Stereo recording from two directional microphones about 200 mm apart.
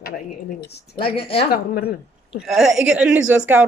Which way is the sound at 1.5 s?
50° left (ahead or behind).